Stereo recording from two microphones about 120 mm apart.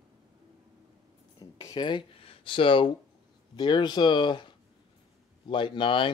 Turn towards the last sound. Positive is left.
turn(degrees=45)  # may be behind; listen again after turning